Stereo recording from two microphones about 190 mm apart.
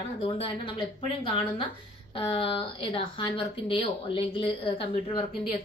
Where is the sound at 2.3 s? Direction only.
30° left (ahead or behind).